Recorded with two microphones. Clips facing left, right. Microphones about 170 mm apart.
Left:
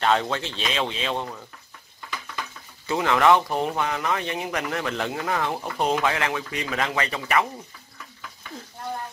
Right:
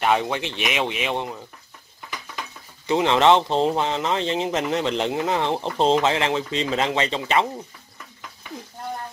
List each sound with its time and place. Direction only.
0.0 s speech: 15° right (ahead or behind)
2.9 s speech: 20° right (ahead or behind)